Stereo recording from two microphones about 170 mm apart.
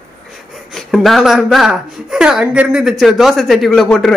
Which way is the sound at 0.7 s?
Centre (ahead or behind).